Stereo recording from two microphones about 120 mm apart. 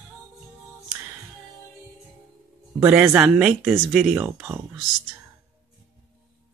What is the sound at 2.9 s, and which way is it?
Speech, 15° right (ahead or behind).